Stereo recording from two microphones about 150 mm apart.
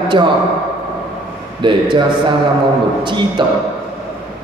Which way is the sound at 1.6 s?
30° right (ahead or behind).